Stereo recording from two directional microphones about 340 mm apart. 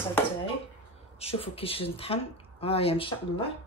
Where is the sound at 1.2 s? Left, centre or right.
Centre.